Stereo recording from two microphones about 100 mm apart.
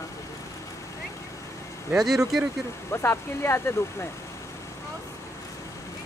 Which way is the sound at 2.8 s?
25° left (ahead or behind).